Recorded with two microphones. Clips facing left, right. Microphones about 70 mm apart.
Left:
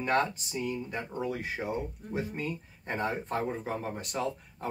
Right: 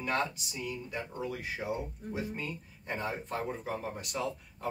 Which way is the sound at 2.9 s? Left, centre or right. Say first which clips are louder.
Left 4 dB; left.